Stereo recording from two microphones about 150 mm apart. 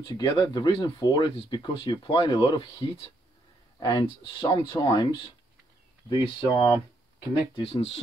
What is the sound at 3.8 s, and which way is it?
Speech, 30° left (ahead or behind).